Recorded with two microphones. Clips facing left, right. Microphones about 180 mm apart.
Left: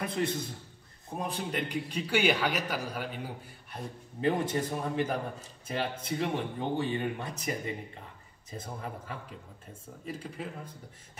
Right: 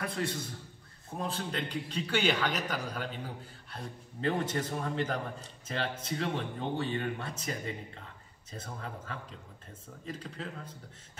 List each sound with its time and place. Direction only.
0.0 s a man's voice: 20° left (ahead or behind)